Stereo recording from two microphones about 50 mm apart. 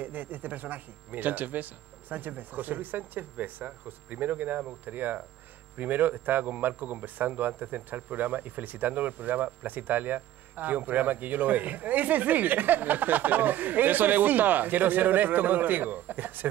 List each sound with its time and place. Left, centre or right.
0.0 s a man's voice: right